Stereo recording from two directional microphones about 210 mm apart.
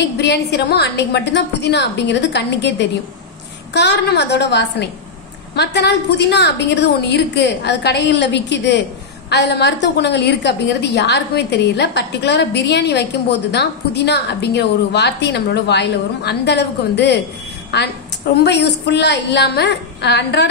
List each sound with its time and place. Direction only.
0.2 s a woman's voice: 50° left (ahead or behind)
18.4 s a woman's voice: 55° left (ahead or behind)